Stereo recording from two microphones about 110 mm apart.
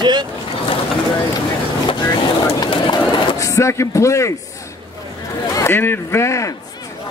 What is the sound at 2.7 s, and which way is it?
Bird, 45° left (ahead or behind).